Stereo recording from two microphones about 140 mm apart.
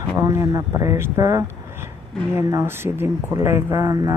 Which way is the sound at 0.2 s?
25° right (ahead or behind).